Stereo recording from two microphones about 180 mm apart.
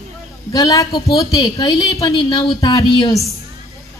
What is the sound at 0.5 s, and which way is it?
A woman's voice, 20° left (ahead or behind).